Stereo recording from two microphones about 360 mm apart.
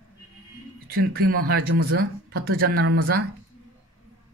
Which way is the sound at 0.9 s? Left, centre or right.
Right.